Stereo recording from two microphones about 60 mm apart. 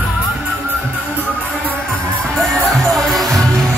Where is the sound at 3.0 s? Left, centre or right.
Centre.